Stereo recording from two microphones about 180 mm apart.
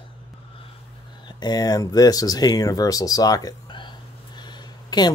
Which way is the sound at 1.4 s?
20° left (ahead or behind).